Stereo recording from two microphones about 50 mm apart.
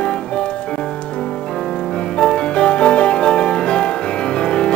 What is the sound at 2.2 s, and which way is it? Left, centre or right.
Music, centre.